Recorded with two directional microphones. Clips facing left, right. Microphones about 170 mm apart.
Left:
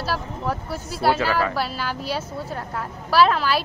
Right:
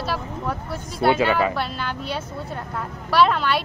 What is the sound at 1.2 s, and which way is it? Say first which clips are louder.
Speech: right 2 dB; 20° right (ahead or behind).